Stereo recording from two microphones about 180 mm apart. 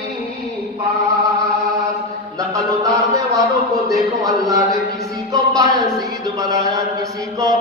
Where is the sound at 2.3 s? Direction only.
20° right (ahead or behind).